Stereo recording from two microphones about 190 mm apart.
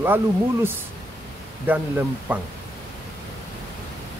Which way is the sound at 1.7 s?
10° right (ahead or behind).